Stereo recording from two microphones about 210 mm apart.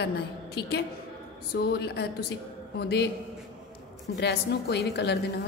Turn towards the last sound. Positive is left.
turn(degrees=55)  # may be behind; listen again after turning